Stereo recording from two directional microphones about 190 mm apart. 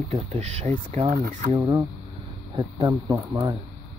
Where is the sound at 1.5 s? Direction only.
20° right (ahead or behind).